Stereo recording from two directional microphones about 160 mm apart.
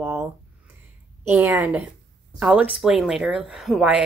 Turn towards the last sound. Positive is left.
turn(degrees=-5)  # may be behind; listen again after turning